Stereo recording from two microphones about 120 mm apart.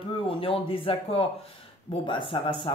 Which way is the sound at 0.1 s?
50° left (ahead or behind).